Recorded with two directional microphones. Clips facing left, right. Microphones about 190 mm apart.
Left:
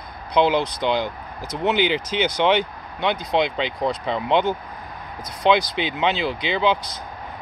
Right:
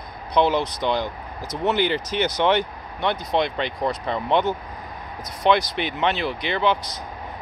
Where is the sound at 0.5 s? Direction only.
30° left (ahead or behind).